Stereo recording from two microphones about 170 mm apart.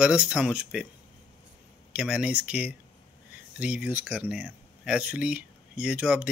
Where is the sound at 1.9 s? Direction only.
5° right (ahead or behind).